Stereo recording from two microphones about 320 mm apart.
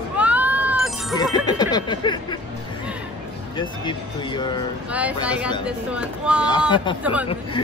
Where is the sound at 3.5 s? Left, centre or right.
Centre.